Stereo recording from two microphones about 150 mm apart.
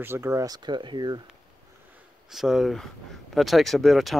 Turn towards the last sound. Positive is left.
turn(degrees=0)  # may be behind; listen again after turning